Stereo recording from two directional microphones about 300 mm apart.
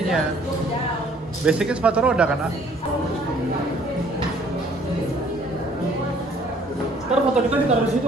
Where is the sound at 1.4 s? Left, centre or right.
Centre.